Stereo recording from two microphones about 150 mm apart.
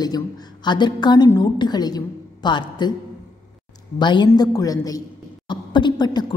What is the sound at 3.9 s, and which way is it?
A woman's voice, 30° left (ahead or behind).